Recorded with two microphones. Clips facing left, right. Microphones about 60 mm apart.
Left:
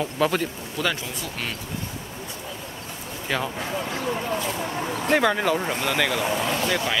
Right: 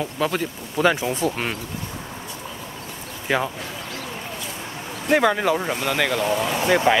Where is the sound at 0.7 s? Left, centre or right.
Right.